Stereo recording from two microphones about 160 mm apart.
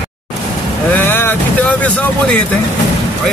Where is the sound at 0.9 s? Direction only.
15° left (ahead or behind).